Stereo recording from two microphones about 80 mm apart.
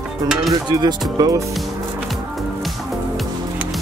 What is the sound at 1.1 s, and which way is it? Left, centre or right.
Speech, right.